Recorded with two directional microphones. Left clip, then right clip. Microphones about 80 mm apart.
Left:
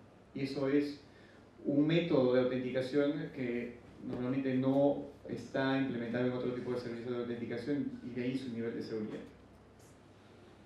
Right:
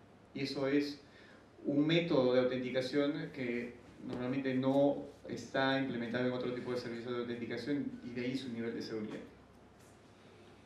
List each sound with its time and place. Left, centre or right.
0.3 s speech: right